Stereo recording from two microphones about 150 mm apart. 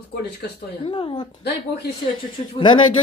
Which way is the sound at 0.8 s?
35° left (ahead or behind).